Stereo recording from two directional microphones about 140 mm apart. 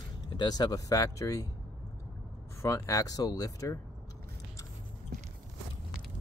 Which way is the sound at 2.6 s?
20° left (ahead or behind).